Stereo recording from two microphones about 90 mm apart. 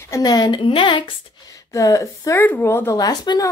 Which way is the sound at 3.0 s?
45° left (ahead or behind).